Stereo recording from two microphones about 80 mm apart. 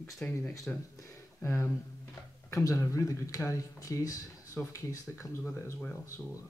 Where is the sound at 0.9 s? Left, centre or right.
Left.